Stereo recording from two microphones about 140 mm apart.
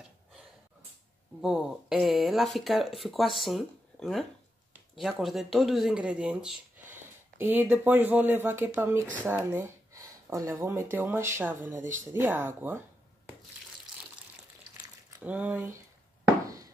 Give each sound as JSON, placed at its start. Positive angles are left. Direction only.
{"t": 1.4, "sound": "speech", "side_deg": -5}
{"t": 15.2, "sound": "speech", "side_deg": -10}